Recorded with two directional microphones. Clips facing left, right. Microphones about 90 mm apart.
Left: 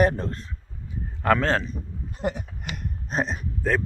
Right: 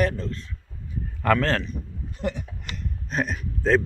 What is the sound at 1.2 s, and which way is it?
Speech, 10° left (ahead or behind).